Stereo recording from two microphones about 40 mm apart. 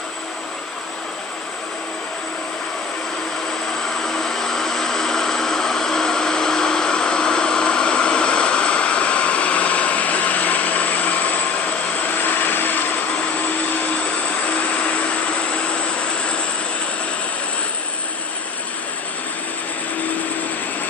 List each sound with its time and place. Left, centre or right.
4.0 s vehicle: centre; by 13.0 s left
14.5 s vehicle: left